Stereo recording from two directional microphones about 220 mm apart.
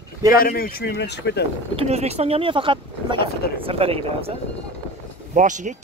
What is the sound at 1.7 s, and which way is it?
Speech, 30° right (ahead or behind).